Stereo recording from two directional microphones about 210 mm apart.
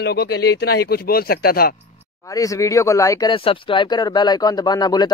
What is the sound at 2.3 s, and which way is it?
Speech, 15° left (ahead or behind).